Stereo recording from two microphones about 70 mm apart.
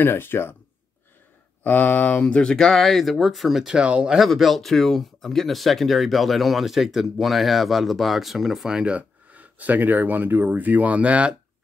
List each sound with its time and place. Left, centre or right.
0.0 s speech: left
1.6 s speech: left; by 4.2 s centre
4.2 s speech: centre